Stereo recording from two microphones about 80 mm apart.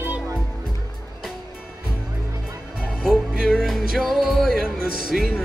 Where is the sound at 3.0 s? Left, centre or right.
Centre.